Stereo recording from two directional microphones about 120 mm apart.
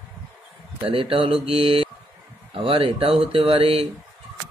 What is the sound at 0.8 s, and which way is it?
A man's voice, 50° right (ahead or behind).